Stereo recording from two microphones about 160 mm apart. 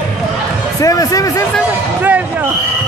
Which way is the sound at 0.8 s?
20° left (ahead or behind).